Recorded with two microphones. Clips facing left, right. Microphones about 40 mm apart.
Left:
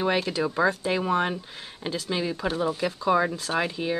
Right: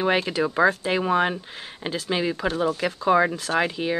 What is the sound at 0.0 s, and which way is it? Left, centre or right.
Speech, centre.